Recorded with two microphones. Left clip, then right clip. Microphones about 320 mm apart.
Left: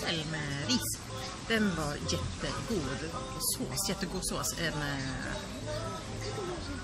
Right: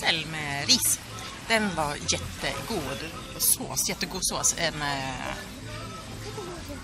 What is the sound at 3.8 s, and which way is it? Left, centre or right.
Speech, centre.